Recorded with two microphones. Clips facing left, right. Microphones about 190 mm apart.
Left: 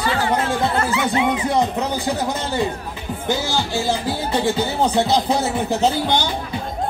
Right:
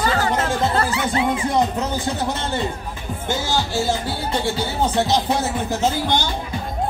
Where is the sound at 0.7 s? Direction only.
35° right (ahead or behind).